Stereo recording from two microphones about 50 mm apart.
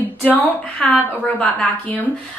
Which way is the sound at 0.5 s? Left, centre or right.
Left.